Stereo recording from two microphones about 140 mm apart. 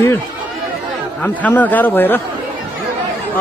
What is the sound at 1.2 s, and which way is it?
Speech, 10° left (ahead or behind).